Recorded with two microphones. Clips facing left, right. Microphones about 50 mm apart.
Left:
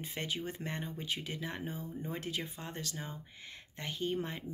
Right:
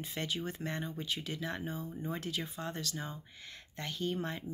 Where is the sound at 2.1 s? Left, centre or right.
Left.